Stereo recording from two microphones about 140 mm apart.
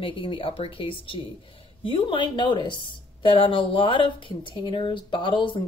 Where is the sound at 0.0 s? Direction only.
40° left (ahead or behind).